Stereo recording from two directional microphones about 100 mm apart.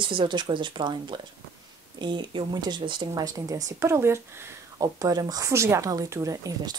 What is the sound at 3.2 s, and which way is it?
Speech, 35° right (ahead or behind).